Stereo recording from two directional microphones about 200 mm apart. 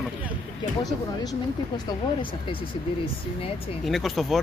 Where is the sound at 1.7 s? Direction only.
25° left (ahead or behind).